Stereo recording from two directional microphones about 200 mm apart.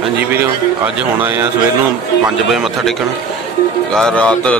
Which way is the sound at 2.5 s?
Centre (ahead or behind).